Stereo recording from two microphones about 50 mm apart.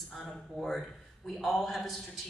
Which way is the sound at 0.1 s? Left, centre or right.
Centre.